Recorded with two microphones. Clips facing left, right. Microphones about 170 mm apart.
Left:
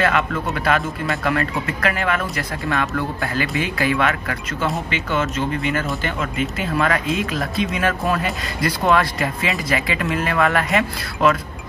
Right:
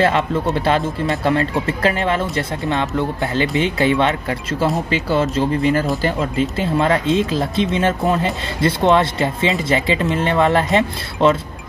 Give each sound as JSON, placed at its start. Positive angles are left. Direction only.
{"t": 0.0, "sound": "speech", "side_deg": -30}